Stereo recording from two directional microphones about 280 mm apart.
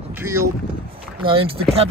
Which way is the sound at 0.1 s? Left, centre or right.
Centre.